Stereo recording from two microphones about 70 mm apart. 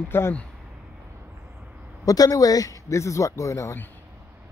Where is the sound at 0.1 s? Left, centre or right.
Left.